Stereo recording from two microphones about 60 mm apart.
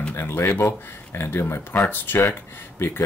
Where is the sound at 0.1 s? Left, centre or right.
Left.